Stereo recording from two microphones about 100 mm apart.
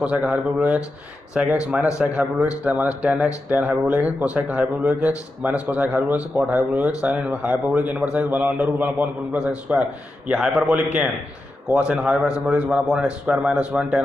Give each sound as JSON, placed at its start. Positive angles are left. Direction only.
{"t": 0.0, "sound": "speech", "side_deg": -10}